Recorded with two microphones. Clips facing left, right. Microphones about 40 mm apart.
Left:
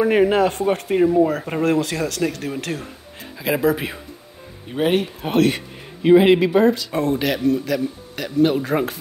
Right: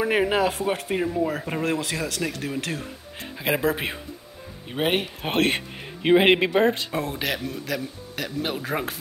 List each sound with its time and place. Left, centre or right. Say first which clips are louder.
0.0 s speech: left 5 dB; centre
4.6 s speech: left 5 dB; centre; by 6.9 s right
6.9 s speech: left 7 dB; centre